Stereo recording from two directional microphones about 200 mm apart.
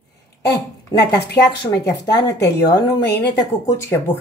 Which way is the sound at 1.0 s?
55° left (ahead or behind).